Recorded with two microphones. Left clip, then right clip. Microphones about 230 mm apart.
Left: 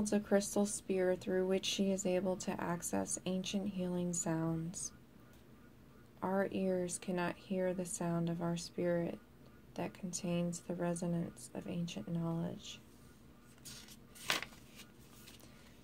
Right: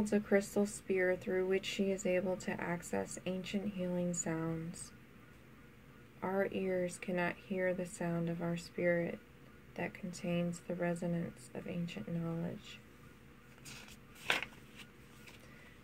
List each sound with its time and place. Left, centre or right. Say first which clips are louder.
0.1 s speech: right 1 dB; left
6.2 s speech: even; left
14.2 s a sound: right 2 dB; centre